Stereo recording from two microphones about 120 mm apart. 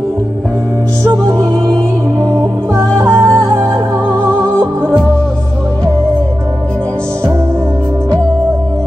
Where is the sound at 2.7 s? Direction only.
30° right (ahead or behind).